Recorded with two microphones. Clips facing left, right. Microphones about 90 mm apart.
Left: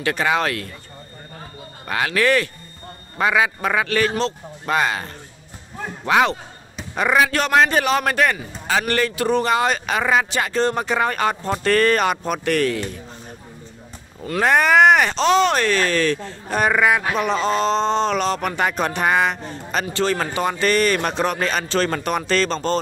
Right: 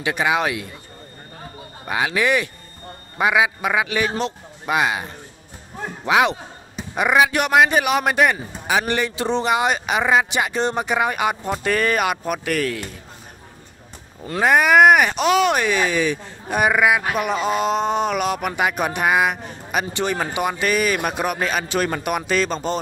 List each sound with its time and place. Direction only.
0.0 s speech: 15° right (ahead or behind)
1.9 s speech: 15° right (ahead or behind)
14.4 s speech: 5° right (ahead or behind)